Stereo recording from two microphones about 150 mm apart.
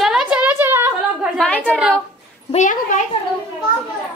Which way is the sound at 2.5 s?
55° left (ahead or behind).